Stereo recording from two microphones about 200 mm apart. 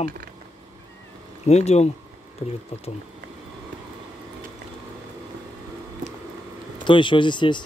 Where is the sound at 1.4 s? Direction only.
35° left (ahead or behind).